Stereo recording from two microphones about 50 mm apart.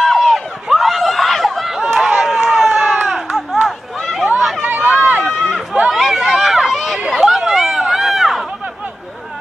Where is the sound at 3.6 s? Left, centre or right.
Centre.